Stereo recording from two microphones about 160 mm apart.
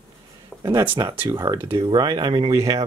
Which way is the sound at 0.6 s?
15° right (ahead or behind).